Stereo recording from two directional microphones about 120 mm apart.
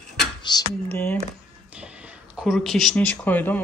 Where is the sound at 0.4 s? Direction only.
35° left (ahead or behind).